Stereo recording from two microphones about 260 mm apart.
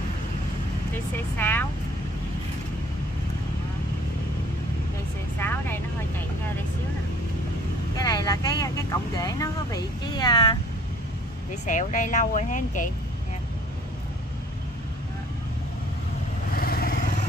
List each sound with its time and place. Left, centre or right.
0.9 s speech: centre
5.4 s vehicle: centre
7.9 s speech: centre
11.6 s speech: left
16.5 s vehicle: left